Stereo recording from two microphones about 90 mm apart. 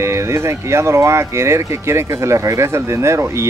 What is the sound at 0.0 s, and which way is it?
Speech, 30° right (ahead or behind).